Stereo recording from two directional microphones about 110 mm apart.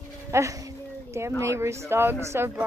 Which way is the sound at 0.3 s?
30° right (ahead or behind).